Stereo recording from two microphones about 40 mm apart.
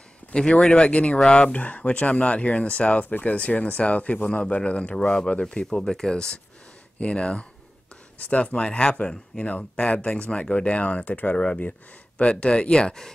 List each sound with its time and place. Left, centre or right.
0.3 s speech: centre
1.6 s speech: left
5.4 s speech: left
8.6 s speech: left
9.4 s speech: left
11.3 s speech: left